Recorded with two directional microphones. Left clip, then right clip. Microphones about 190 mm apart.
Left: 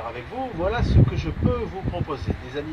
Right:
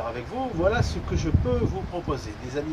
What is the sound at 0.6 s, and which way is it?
Speech, 5° right (ahead or behind).